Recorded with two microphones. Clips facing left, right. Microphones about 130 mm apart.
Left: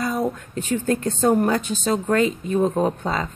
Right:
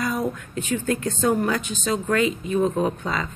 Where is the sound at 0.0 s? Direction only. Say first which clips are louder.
Left 2 dB; 30° left (ahead or behind).